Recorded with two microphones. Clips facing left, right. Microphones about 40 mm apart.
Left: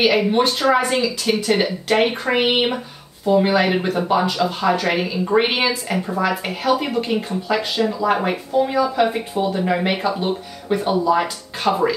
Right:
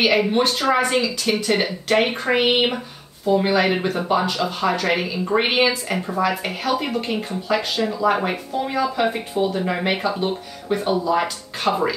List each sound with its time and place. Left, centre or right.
0.0 s speech: centre